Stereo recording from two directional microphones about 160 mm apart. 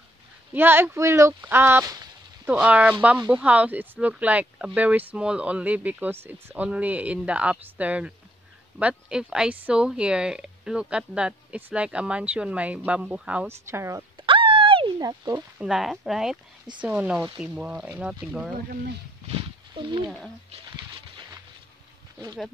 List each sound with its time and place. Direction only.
0.5 s speech: 15° right (ahead or behind)
14.1 s a sound: 30° right (ahead or behind)
15.6 s speech: centre (ahead or behind)
19.7 s speech: 30° right (ahead or behind)